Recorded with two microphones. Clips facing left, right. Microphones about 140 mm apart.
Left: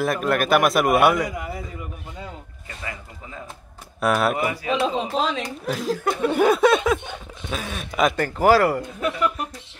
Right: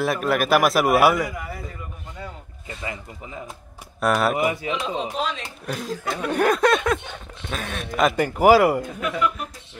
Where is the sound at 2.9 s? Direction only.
20° right (ahead or behind).